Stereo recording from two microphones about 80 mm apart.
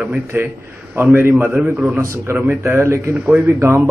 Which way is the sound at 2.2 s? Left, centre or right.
Right.